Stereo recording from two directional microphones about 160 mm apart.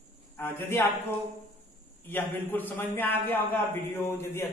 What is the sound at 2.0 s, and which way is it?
Speech, 10° left (ahead or behind).